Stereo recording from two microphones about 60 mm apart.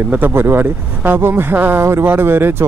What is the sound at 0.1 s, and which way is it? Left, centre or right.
Speech, right.